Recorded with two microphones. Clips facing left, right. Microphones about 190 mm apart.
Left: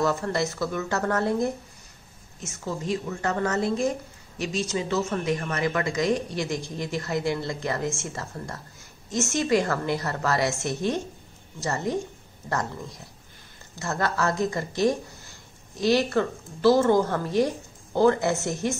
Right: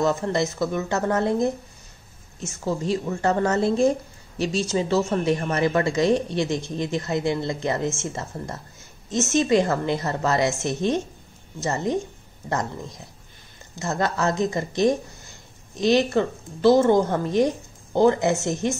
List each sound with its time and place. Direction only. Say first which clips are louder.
0.0 s speech: right 3 dB; 20° right (ahead or behind)
2.6 s speech: right 4 dB; 30° right (ahead or behind)
13.7 s speech: right 2 dB; 20° right (ahead or behind)